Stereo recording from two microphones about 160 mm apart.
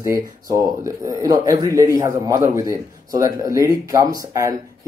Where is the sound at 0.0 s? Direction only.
20° right (ahead or behind).